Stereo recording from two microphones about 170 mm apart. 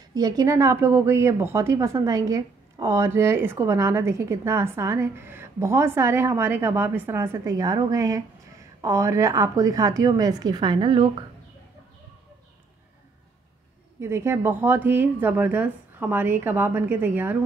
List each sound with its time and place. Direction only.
0.1 s a woman's voice: 20° right (ahead or behind)
14.0 s a woman's voice: 15° right (ahead or behind)